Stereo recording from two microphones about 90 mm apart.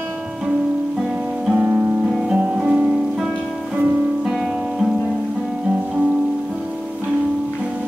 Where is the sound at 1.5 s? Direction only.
15° right (ahead or behind).